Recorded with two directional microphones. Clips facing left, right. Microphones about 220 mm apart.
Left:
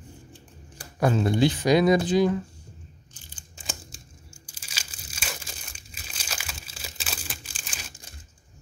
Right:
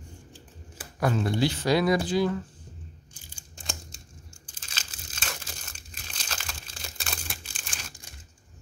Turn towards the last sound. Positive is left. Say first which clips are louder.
# left 1 dB
turn(degrees=0)  # may be behind; listen again after turning